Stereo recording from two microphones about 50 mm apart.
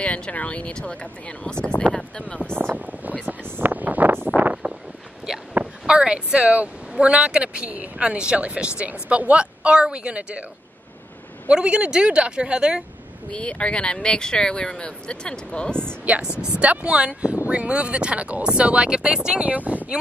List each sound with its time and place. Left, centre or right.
0.0 s speech: left
2.7 s speech: right
3.5 s vehicle: right
5.9 s speech: centre
11.4 s speech: centre
13.3 s speech: left
16.3 s speech: centre
19.4 s speech: right